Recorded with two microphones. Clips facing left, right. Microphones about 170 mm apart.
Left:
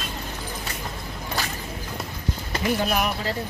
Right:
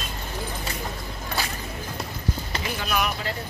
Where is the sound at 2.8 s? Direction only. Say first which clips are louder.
Right 1 dB; 45° left (ahead or behind).